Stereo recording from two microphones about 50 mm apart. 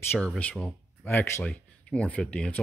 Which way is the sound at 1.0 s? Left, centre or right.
Left.